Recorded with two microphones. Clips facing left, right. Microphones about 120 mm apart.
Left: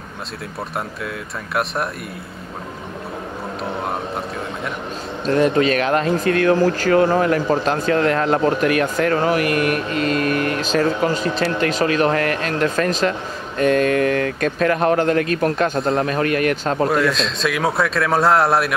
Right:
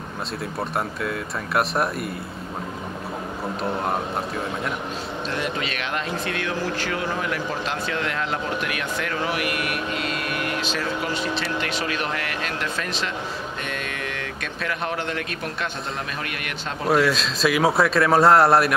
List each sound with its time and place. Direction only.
0.7 s a man's voice: centre (ahead or behind)
5.2 s speech: 40° left (ahead or behind)
16.9 s a man's voice: centre (ahead or behind)